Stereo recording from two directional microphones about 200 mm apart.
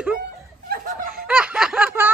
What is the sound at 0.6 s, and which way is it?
Snicker, 45° right (ahead or behind).